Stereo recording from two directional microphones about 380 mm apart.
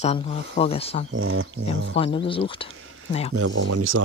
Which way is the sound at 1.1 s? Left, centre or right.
Right.